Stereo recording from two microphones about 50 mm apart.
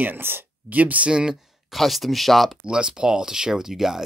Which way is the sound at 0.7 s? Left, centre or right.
Right.